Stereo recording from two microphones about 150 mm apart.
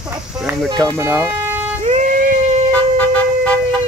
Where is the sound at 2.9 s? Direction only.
10° left (ahead or behind).